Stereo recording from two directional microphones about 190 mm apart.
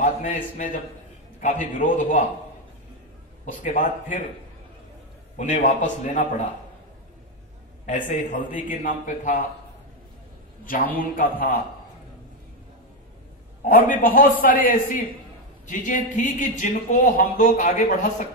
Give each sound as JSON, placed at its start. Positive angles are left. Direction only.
{"t": 0.0, "sound": "a man's voice", "side_deg": 40}
{"t": 3.6, "sound": "speech", "side_deg": 40}
{"t": 5.4, "sound": "speech", "side_deg": 40}
{"t": 7.8, "sound": "a man's voice", "side_deg": 40}
{"t": 11.0, "sound": "a man's voice", "side_deg": 45}
{"t": 13.7, "sound": "a man's voice", "side_deg": 45}